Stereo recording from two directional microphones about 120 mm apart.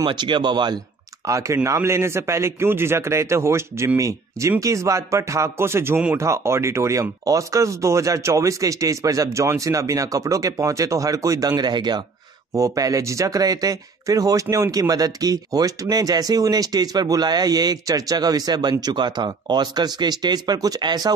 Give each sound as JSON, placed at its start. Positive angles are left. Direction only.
{"t": 0.0, "sound": "speech", "side_deg": -40}
{"t": 1.2, "sound": "a man's voice", "side_deg": -25}